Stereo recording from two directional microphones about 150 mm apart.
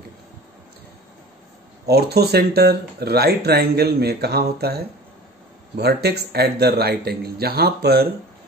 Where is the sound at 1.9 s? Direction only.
90° right.